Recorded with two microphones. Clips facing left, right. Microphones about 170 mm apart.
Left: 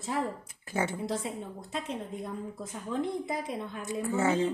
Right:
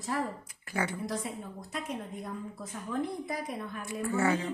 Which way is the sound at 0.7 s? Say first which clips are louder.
Left 2 dB; 25° left (ahead or behind).